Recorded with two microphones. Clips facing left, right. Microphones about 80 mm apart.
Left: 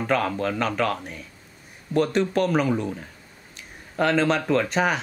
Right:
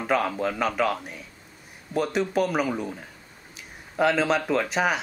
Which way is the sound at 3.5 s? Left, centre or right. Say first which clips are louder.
Even; centre.